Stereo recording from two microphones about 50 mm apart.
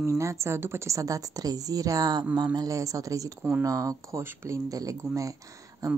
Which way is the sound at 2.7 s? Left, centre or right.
Right.